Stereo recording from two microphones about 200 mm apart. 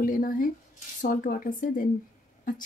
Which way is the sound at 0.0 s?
45° left (ahead or behind).